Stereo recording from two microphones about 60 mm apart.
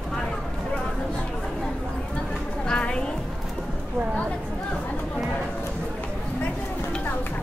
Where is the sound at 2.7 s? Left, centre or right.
Centre.